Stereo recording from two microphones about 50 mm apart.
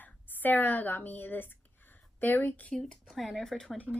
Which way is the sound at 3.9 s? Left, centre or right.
Right.